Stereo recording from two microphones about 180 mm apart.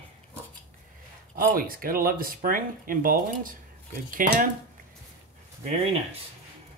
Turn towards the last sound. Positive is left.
turn(degrees=-35)  # may be behind; listen again after turning